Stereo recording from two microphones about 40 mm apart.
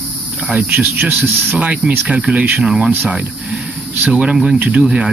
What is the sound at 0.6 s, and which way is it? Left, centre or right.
Speech, right.